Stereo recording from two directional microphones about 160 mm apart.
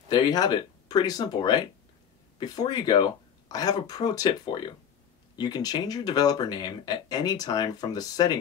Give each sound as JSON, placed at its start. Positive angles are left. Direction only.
{"t": 0.1, "sound": "speech", "side_deg": 25}